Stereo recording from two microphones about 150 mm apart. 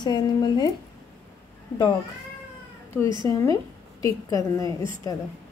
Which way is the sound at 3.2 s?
25° left (ahead or behind).